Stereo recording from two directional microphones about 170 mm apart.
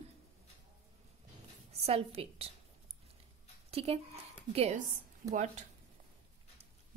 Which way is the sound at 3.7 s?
35° right (ahead or behind).